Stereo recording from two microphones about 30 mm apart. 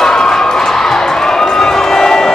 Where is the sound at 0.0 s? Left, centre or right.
Left.